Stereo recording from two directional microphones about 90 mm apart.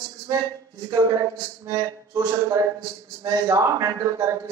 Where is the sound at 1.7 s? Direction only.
35° right (ahead or behind).